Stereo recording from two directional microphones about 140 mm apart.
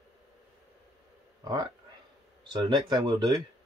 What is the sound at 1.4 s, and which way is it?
Speech, 30° right (ahead or behind).